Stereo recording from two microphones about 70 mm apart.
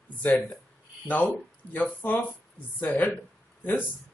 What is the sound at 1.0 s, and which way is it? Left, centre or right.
Speech, left.